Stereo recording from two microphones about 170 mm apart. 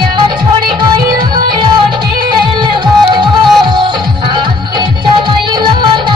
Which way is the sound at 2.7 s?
25° right (ahead or behind).